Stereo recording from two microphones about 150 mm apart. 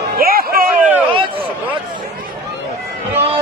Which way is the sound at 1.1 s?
35° right (ahead or behind).